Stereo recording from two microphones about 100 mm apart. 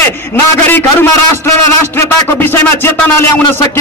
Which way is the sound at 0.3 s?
25° left (ahead or behind).